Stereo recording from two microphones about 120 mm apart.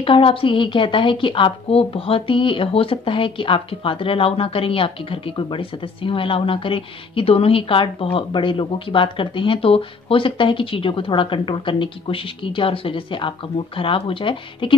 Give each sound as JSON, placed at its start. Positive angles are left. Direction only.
{"t": 0.0, "sound": "a woman's voice", "side_deg": 50}